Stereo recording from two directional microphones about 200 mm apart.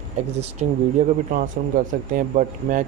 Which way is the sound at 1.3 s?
45° right (ahead or behind).